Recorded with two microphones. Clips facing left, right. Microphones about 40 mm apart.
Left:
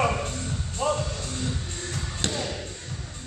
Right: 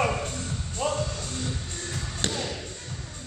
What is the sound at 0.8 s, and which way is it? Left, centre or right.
Music, centre.